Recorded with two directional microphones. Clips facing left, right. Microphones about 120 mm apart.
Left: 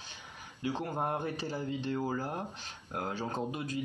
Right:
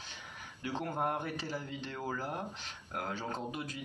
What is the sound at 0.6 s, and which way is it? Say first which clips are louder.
Speech: left 2 dB; 25° left (ahead or behind).